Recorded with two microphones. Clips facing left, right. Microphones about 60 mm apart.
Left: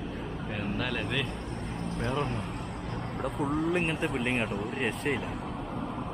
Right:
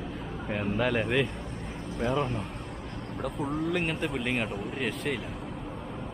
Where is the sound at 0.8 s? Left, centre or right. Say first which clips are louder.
Right 7 dB; centre.